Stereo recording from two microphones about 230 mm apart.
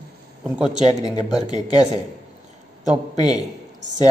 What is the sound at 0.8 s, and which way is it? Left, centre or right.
Speech, centre.